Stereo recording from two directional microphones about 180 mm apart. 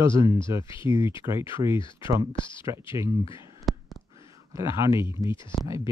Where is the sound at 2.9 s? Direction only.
15° right (ahead or behind).